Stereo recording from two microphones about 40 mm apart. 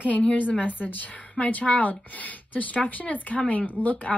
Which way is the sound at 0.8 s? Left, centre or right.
Left.